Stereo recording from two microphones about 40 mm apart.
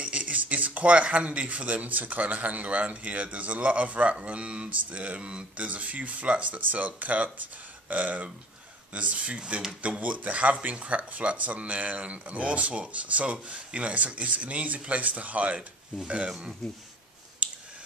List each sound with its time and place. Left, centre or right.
0.0 s speech: right
5.7 s speech: right
16.6 s speech: centre